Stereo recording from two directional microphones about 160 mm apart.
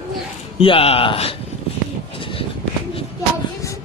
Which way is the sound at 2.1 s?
35° left (ahead or behind).